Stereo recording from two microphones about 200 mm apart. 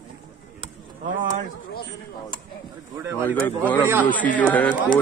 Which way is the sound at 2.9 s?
15° right (ahead or behind).